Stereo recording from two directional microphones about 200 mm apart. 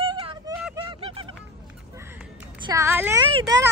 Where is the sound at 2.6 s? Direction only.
15° right (ahead or behind).